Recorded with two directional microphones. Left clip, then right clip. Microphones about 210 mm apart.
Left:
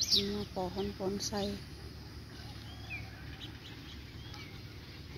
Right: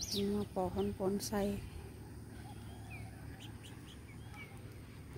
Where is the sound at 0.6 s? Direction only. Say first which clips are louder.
Even; 20° right (ahead or behind).